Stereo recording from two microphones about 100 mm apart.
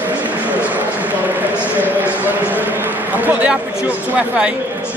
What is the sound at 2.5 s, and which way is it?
A man's voice, 20° right (ahead or behind).